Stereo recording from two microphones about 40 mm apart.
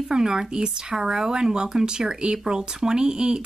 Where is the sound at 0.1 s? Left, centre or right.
Centre.